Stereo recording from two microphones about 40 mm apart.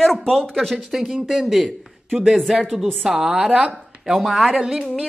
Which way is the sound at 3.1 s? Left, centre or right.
Centre.